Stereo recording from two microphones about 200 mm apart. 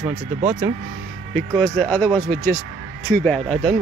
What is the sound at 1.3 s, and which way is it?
Speech, 5° left (ahead or behind).